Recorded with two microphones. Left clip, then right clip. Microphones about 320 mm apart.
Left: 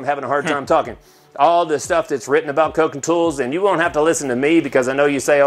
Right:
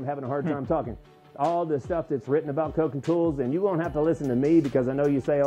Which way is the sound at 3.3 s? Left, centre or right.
Centre.